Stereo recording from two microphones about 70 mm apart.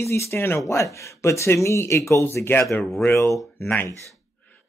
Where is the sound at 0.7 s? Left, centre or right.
Left.